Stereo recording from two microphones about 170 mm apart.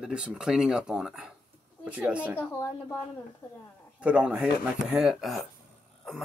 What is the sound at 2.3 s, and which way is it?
Speech, 15° left (ahead or behind).